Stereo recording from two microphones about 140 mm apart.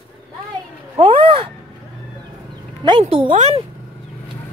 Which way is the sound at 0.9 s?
40° right (ahead or behind).